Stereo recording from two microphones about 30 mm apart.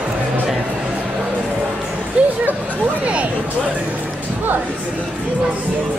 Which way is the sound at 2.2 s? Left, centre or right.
Right.